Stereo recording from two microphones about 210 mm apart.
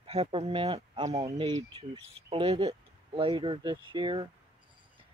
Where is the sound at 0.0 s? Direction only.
25° right (ahead or behind).